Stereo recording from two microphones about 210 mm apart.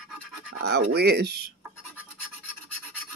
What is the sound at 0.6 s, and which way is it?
Speech, 50° right (ahead or behind).